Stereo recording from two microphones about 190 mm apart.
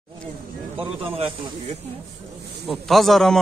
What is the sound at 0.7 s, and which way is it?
Speech, 30° right (ahead or behind).